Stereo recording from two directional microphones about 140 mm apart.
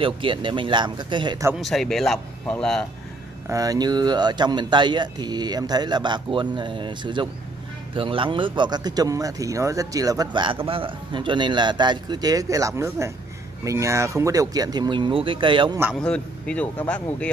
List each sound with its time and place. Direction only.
0.0 s a man's voice: 35° right (ahead or behind)
1.6 s speech: centre (ahead or behind)
3.4 s a man's voice: 25° right (ahead or behind)
16.0 s speech: 5° left (ahead or behind)